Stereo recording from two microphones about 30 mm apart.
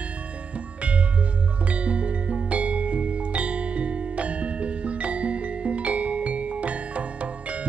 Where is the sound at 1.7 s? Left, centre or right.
Right.